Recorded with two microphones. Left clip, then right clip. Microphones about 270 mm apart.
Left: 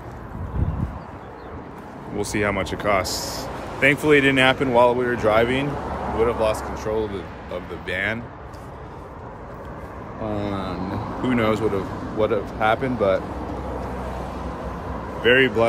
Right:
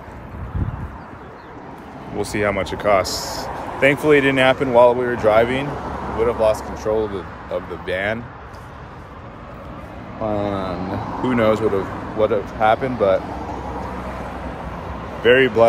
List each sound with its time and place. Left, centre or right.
2.1 s speech: centre
7.0 s speech: centre
7.5 s speech: centre
10.2 s speech: centre
15.2 s speech: centre